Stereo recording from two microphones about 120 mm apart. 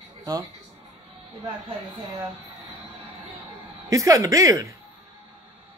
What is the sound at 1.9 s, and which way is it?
Speech, 35° right (ahead or behind).